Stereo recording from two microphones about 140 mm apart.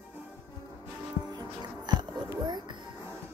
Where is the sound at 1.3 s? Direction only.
30° right (ahead or behind).